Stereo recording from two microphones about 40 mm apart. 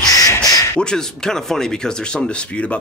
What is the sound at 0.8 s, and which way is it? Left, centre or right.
Speech, centre.